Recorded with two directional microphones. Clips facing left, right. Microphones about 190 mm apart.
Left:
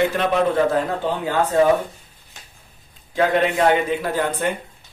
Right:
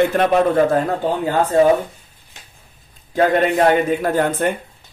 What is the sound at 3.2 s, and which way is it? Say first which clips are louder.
A man's voice: right 3 dB; 45° right (ahead or behind).